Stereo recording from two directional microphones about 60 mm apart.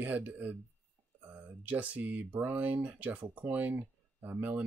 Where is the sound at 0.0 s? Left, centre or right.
Right.